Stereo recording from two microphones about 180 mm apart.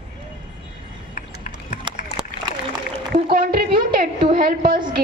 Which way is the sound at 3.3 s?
55° right (ahead or behind).